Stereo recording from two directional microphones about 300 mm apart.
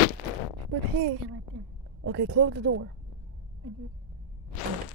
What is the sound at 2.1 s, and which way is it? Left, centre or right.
Speech, right.